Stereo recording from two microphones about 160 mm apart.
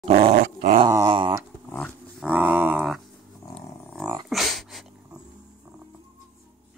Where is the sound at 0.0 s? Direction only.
40° right (ahead or behind).